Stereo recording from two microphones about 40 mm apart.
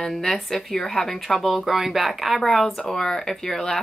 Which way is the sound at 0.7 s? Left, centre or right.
Centre.